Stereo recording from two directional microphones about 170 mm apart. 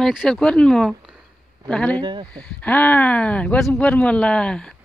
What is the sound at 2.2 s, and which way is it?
Speech, 5° left (ahead or behind).